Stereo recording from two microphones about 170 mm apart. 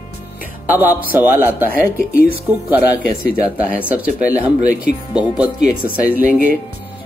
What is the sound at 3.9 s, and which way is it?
Speech, 10° right (ahead or behind).